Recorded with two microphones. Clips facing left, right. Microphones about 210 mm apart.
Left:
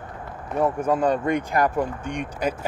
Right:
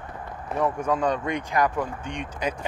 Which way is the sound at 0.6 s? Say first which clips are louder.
Left 3 dB; 5° left (ahead or behind).